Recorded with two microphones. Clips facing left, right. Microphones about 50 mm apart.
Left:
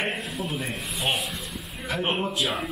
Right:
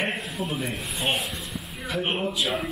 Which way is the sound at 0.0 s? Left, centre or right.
Centre.